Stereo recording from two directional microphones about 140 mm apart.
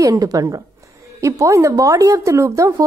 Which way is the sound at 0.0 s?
25° right (ahead or behind).